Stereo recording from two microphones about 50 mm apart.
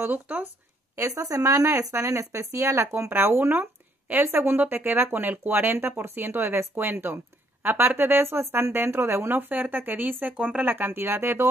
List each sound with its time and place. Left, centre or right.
0.1 s speech: right
0.9 s speech: right
3.1 s speech: right
10.3 s speech: right
10.6 s speech: right